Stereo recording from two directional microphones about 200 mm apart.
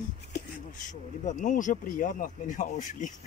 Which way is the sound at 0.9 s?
40° left (ahead or behind).